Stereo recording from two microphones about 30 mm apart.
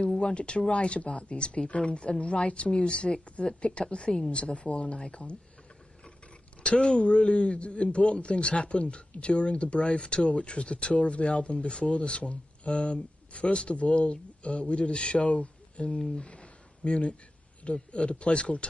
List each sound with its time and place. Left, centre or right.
0.2 s a man's voice: left
6.7 s speech: centre
7.0 s a man's voice: left
15.3 s a sound: left
17.6 s a man's voice: left